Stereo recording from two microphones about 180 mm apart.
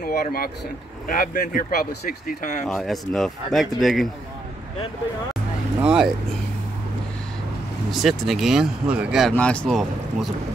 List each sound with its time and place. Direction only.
0.0 s speech: 55° left (ahead or behind)
2.6 s speech: centre (ahead or behind)
5.8 s speech: 5° right (ahead or behind)
7.9 s speech: centre (ahead or behind)
9.3 s speech: 5° left (ahead or behind)